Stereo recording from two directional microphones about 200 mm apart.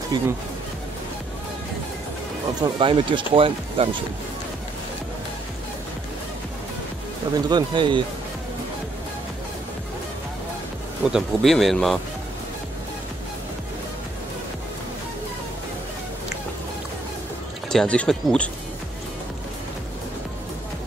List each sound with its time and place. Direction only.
0.1 s speech: 20° right (ahead or behind)
2.6 s speech: 25° right (ahead or behind)
7.3 s speech: 20° right (ahead or behind)
11.1 s speech: centre (ahead or behind)
17.6 s speech: 5° left (ahead or behind)